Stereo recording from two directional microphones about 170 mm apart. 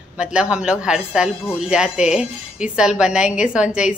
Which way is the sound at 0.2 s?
5° right (ahead or behind).